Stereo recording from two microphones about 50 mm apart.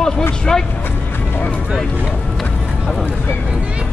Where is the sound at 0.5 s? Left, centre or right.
Centre.